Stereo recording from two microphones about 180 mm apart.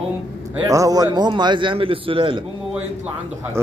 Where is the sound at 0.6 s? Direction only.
20° right (ahead or behind).